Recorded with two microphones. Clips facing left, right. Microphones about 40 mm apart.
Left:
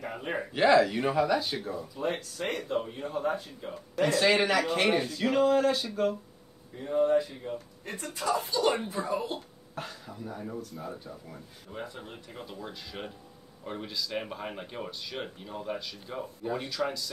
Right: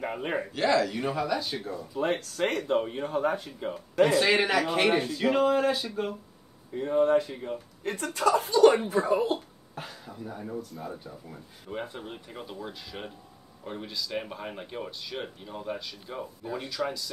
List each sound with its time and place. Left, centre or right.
0.0 s speech: right
0.5 s speech: centre
2.0 s speech: right
4.0 s speech: centre
6.8 s speech: right
9.8 s speech: centre
11.7 s speech: right
12.0 s speech: centre
16.4 s speech: centre
16.7 s speech: centre